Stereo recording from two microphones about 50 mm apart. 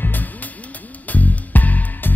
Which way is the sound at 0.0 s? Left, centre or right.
Left.